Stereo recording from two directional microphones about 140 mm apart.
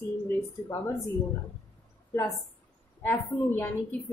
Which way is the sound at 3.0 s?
15° left (ahead or behind).